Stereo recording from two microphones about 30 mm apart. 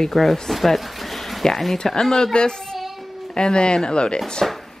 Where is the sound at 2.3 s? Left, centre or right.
Left.